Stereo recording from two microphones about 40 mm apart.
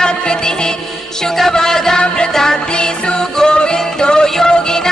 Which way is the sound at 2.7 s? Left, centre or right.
Left.